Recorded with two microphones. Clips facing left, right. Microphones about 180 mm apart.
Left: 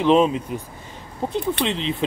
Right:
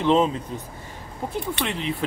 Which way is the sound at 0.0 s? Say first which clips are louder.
Left 3 dB; 15° left (ahead or behind).